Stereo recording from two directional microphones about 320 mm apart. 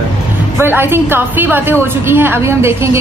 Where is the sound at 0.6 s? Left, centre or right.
Centre.